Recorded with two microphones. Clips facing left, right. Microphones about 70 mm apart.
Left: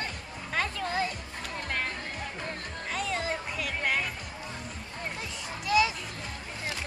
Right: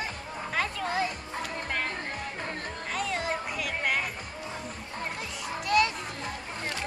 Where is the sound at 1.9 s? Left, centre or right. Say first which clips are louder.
Right 2 dB; right.